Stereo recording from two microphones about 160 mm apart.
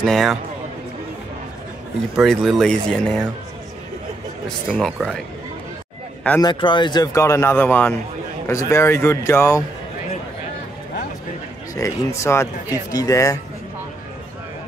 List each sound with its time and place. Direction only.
0.0 s speech: centre (ahead or behind)
2.1 s speech: centre (ahead or behind)
4.6 s speech: 5° right (ahead or behind)
6.4 s speech: 30° left (ahead or behind)
11.7 s speech: 20° left (ahead or behind)